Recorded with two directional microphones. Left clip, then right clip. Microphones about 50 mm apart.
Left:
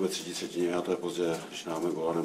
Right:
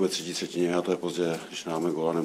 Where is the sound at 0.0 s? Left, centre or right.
Right.